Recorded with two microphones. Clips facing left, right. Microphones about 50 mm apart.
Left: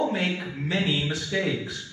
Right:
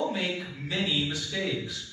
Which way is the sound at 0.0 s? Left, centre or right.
Left.